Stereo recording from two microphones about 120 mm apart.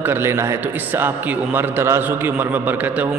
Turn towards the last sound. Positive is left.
turn(degrees=-15)  # may be behind; listen again after turning